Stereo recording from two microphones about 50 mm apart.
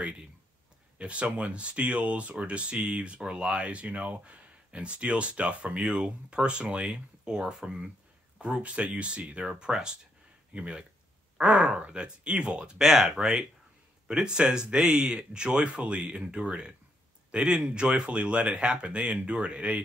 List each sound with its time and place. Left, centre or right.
0.9 s speech: right
12.7 s speech: centre